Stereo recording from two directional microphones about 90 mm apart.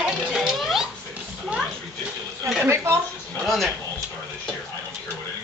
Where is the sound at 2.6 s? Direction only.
30° right (ahead or behind).